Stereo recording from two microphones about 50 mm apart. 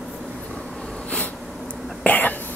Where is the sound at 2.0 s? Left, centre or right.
Left.